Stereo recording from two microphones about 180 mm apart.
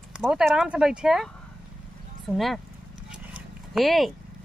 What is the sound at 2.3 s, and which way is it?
Speech, centre (ahead or behind).